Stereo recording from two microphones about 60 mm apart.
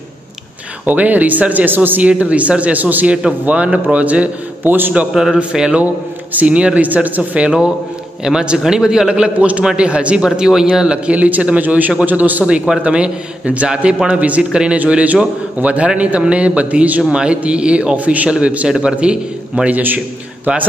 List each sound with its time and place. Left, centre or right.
0.8 s speech: right
5.1 s a man's voice: centre; by 7.4 s right
7.4 s a man's voice: centre
12.4 s a man's voice: centre